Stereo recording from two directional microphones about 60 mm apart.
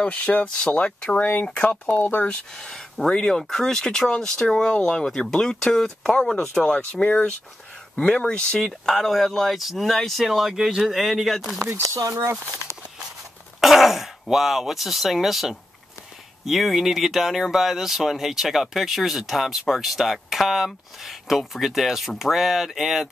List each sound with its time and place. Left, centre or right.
0.0 s speech: left
1.2 s speech: left
2.2 s speech: centre
11.8 s speech: right
12.1 s speech: right
13.6 s throat clearing: centre
14.3 s speech: centre